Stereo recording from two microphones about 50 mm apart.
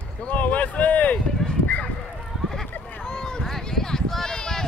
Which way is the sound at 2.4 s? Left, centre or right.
Centre.